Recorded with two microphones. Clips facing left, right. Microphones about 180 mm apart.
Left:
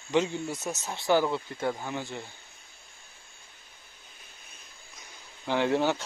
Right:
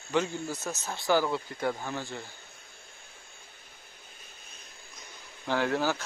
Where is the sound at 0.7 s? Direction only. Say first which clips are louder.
Left 2 dB; 20° left (ahead or behind).